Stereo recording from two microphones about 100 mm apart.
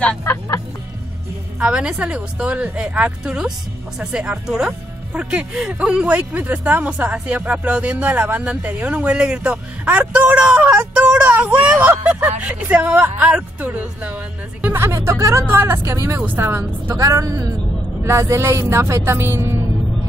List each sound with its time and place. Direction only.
0.2 s speech: 25° left (ahead or behind)
1.6 s a woman's voice: 10° right (ahead or behind); by 19.6 s 25° right (ahead or behind)